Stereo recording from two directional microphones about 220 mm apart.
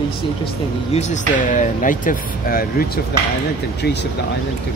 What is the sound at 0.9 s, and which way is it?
Speech, 30° left (ahead or behind).